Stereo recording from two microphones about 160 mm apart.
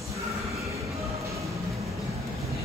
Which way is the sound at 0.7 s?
20° right (ahead or behind).